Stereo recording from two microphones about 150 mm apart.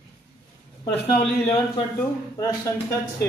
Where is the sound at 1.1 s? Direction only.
40° left (ahead or behind).